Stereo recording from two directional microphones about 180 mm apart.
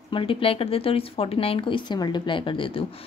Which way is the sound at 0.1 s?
30° left (ahead or behind).